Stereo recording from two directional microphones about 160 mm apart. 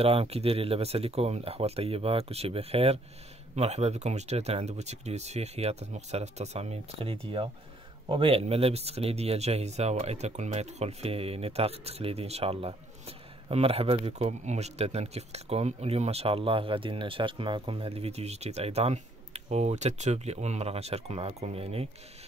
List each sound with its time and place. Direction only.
0.0 s speech: 40° right (ahead or behind)